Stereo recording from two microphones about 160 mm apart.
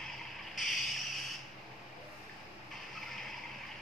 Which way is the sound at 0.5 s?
Centre (ahead or behind).